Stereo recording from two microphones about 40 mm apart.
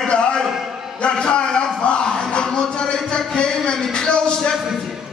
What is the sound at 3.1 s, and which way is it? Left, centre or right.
Speech, centre.